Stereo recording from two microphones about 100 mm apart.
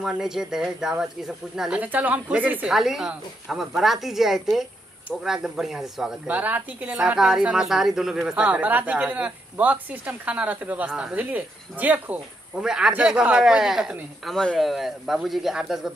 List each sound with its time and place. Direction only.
0.0 s speech: 5° right (ahead or behind)
1.8 s speech: 15° right (ahead or behind)
2.7 s speech: 5° right (ahead or behind)
6.2 s speech: 15° right (ahead or behind)
12.6 s speech: 5° right (ahead or behind)
14.2 s speech: 5° left (ahead or behind)